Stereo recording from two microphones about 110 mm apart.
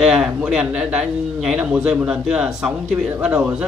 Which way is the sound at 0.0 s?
5° right (ahead or behind).